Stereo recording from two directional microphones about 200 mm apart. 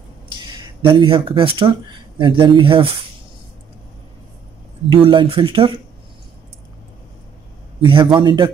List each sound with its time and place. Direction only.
0.4 s speech: 25° right (ahead or behind)
4.9 s speech: 25° right (ahead or behind)
7.8 s speech: 25° right (ahead or behind)